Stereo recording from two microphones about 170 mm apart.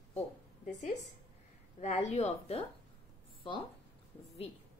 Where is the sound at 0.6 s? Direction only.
45° left (ahead or behind).